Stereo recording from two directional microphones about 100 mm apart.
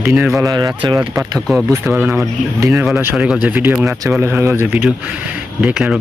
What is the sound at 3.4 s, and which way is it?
Speech, 15° right (ahead or behind).